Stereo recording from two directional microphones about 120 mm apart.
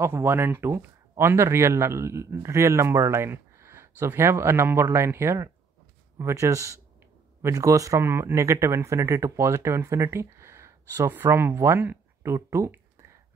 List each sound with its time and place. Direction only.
0.0 s speech: 20° right (ahead or behind)